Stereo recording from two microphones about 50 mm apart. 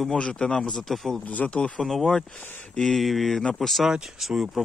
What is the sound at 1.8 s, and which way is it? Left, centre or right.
Speech, centre.